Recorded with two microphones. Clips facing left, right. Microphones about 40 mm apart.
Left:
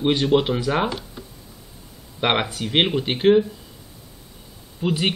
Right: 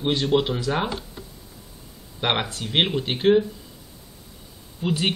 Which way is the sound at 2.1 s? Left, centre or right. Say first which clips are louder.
Left 3 dB; centre.